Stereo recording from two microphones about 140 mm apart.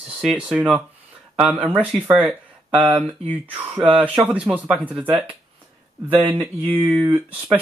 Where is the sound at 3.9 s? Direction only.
10° right (ahead or behind).